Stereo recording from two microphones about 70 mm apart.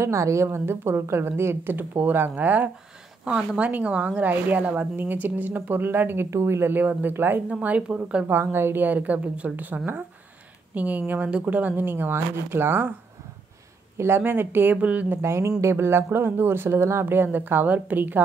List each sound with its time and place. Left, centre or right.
0.0 s speech: right
7.4 s speech: centre
8.3 s speech: right
13.9 s speech: right
15.2 s speech: right